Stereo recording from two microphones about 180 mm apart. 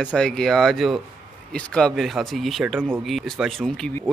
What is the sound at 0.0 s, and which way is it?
Speech, 5° left (ahead or behind).